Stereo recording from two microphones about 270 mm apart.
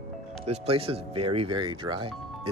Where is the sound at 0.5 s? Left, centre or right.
Right.